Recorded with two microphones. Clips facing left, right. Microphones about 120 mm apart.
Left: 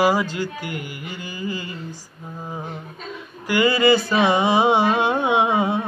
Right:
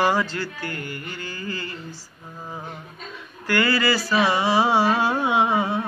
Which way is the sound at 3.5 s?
15° left (ahead or behind).